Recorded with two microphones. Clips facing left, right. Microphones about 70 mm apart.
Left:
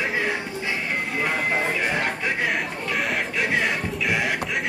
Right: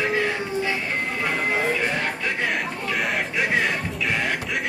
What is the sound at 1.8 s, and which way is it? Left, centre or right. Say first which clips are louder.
Speech: even; centre.